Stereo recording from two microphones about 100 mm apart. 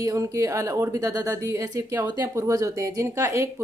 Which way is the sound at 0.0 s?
35° right (ahead or behind).